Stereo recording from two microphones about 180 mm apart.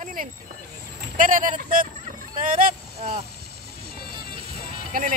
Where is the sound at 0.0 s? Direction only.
50° right (ahead or behind).